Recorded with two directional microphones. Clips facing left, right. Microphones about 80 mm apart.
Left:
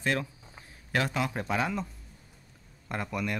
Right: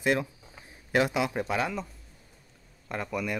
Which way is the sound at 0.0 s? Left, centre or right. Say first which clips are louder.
Right 3 dB; centre.